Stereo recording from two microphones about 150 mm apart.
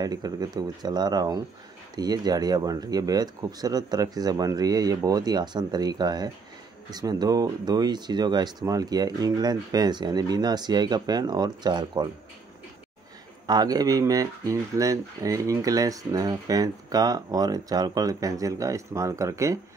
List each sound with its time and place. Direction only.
0.0 s speech: 25° right (ahead or behind)
13.5 s speech: 25° right (ahead or behind)